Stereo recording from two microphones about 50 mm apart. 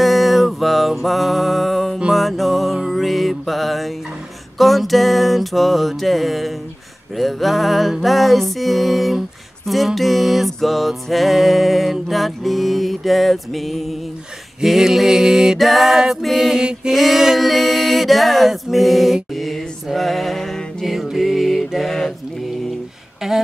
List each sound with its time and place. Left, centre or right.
0.0 s mantra: centre
2.1 s music: centre
19.3 s mantra: centre